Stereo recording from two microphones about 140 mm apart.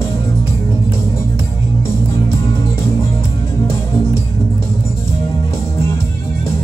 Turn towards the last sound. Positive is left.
turn(degrees=20)  # may be behind; listen again after turning